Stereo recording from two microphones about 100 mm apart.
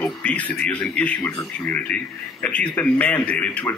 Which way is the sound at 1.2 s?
30° left (ahead or behind).